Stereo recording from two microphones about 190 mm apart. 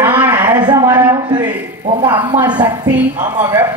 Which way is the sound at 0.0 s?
10° right (ahead or behind).